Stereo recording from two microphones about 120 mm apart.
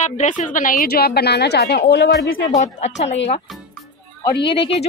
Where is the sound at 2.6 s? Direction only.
70° left (ahead or behind).